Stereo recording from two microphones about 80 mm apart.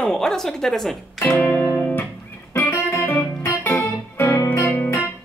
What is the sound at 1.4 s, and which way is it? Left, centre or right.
Music, left.